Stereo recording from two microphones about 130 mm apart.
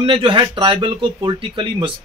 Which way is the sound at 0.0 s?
40° right (ahead or behind).